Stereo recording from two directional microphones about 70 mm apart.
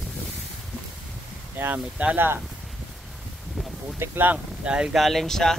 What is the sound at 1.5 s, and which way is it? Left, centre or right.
Speech, right.